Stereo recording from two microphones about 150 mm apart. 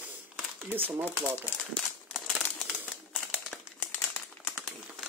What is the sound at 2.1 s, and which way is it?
Crumpling, centre (ahead or behind).